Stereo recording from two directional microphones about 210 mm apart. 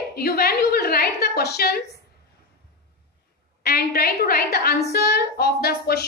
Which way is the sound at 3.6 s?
45° left (ahead or behind).